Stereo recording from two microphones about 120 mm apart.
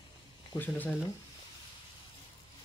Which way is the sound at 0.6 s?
15° left (ahead or behind).